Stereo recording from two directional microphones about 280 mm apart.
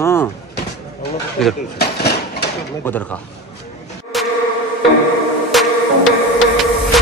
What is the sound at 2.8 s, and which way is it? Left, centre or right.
Speech, centre.